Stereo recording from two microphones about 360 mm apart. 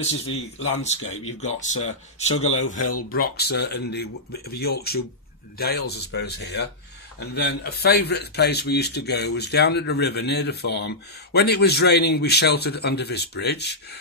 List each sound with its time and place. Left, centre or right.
0.3 s speech: left
0.7 s a man's voice: centre
2.8 s speech: left
3.1 s a man's voice: left